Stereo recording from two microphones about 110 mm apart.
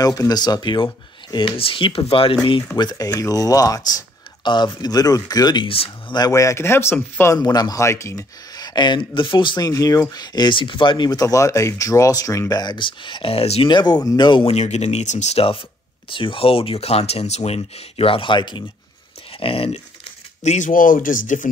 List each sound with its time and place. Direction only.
0.0 s speech: 35° left (ahead or behind)
1.3 s speech: 55° left (ahead or behind)
2.8 s speech: 35° left (ahead or behind)
4.5 s speech: 45° left (ahead or behind)
5.7 s speech: 55° left (ahead or behind)
6.1 s speech: 35° left (ahead or behind)
7.3 s speech: 35° left (ahead or behind)
9.7 s speech: 30° left (ahead or behind); by 13.7 s 60° left (ahead or behind)
13.7 s speech: 40° left (ahead or behind)
14.4 s speech: 80° left; by 18.6 s 45° left (ahead or behind)
19.4 s speech: 60° left (ahead or behind)
20.4 s speech: 90° left